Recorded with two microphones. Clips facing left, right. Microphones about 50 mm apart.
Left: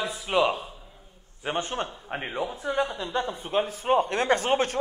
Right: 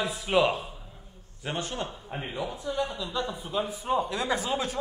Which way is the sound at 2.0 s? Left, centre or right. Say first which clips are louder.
Left 3 dB; left.